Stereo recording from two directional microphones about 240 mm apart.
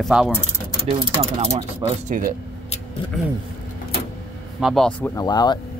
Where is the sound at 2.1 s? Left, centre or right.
Right.